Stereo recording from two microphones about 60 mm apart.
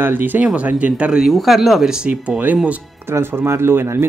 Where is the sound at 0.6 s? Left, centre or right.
Right.